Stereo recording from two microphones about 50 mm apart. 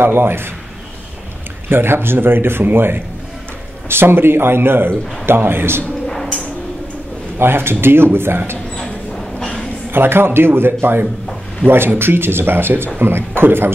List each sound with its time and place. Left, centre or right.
0.0 s a man's voice: right
1.7 s a man's voice: right
7.3 s a man's voice: right
8.7 s a sound: centre
9.8 s a man's voice: right